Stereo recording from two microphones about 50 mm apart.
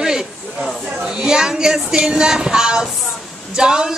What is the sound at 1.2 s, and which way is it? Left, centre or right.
Speech, centre.